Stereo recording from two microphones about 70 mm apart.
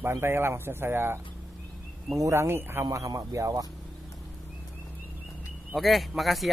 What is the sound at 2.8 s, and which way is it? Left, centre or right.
Speech, right.